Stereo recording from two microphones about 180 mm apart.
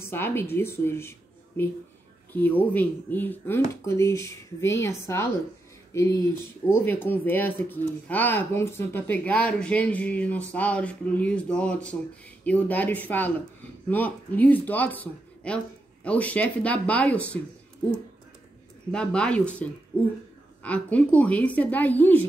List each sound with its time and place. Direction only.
0.0 s speech: 15° left (ahead or behind)
18.9 s speech: 5° left (ahead or behind)